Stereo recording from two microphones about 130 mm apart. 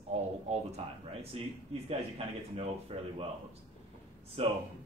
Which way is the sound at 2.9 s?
45° right (ahead or behind).